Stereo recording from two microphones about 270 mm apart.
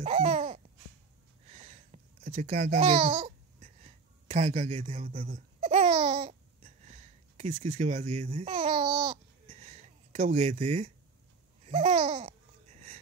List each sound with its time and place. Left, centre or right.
0.0 s babbling: right